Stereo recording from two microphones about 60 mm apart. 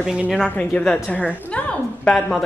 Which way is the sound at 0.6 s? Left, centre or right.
Centre.